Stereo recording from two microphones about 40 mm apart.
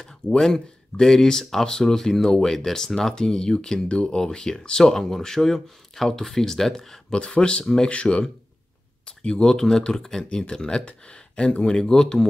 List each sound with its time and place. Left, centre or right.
0.0 s speech: centre
7.1 s speech: left
7.6 s speech: centre
7.9 s speech: left